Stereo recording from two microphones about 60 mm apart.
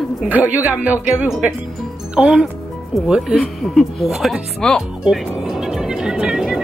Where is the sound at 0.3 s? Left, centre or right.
Right.